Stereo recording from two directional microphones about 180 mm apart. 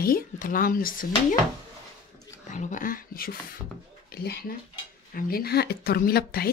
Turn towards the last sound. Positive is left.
turn(degrees=60)  # may be behind; listen again after turning